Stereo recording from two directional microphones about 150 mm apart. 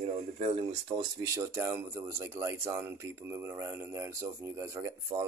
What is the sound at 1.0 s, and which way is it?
Speech, 20° right (ahead or behind).